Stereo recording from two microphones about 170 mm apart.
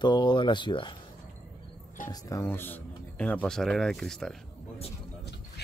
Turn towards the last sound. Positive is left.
turn(degrees=5)  # may be behind; listen again after turning